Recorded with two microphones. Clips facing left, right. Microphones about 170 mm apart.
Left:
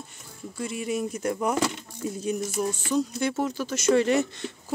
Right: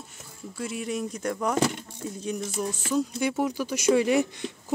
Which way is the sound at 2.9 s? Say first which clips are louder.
Right 2 dB; 10° right (ahead or behind).